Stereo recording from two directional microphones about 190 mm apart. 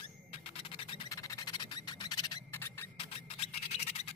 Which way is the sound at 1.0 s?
15° left (ahead or behind).